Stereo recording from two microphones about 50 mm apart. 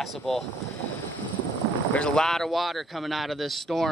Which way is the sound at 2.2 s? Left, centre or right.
Centre.